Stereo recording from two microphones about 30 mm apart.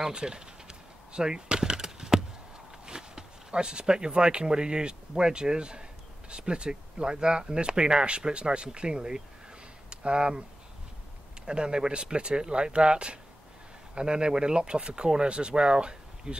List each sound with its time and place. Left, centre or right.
0.1 s chop: right
2.9 s speech: right
11.4 s speech: right